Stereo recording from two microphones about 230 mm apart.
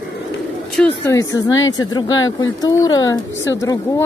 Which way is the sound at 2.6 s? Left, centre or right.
Centre.